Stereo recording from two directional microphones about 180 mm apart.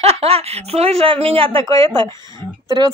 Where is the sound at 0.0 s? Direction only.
35° right (ahead or behind).